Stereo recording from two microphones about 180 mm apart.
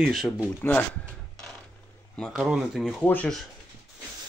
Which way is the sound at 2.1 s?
Centre (ahead or behind).